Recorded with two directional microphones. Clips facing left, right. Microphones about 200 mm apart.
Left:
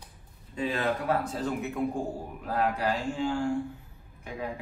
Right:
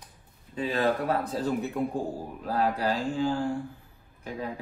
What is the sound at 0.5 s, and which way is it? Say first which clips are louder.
Speech: right 3 dB; 35° right (ahead or behind).